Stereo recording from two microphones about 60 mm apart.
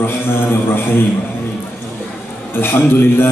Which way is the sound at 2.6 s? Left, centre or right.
Left.